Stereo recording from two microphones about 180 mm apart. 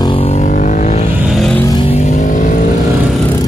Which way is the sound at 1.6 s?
25° left (ahead or behind).